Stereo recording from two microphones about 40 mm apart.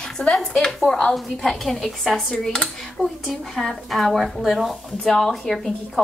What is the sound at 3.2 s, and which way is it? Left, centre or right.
A woman's voice, centre.